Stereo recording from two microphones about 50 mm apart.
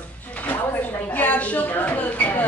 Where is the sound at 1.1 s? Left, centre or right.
Left.